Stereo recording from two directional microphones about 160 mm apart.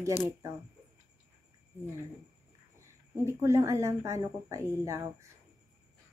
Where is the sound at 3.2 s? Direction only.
15° right (ahead or behind).